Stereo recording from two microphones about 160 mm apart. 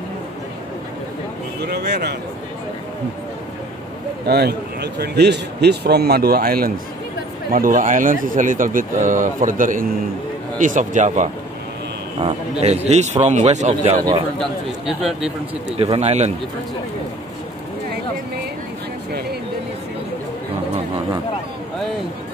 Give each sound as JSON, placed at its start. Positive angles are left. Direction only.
{"t": 1.6, "sound": "a man's voice", "side_deg": -90}
{"t": 4.3, "sound": "a man's voice", "side_deg": -90}
{"t": 7.5, "sound": "a man's voice", "side_deg": -60}
{"t": 14.4, "sound": "a man's voice", "side_deg": 0}
{"t": 15.7, "sound": "a man's voice", "side_deg": -40}